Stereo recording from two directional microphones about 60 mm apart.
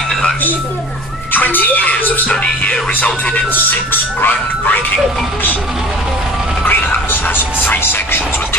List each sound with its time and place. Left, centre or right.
1.3 s speech: left
2.2 s speech: centre
3.9 s speech: left
6.6 s speech: left